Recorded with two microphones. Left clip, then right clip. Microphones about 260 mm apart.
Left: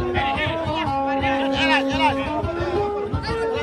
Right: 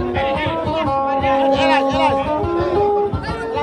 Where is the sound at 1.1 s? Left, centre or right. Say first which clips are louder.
Right 6 dB; right.